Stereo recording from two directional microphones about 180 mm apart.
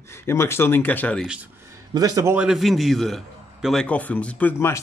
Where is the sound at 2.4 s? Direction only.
Centre (ahead or behind).